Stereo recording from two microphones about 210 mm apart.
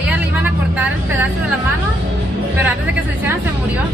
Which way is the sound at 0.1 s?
10° right (ahead or behind).